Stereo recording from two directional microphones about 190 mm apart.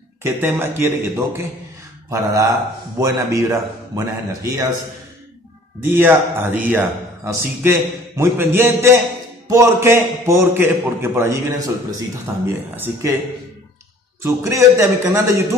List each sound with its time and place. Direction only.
0.2 s a man's voice: 10° right (ahead or behind)
5.9 s a man's voice: 10° right (ahead or behind)
12.7 s a man's voice: 10° right (ahead or behind)
14.2 s a man's voice: 15° right (ahead or behind)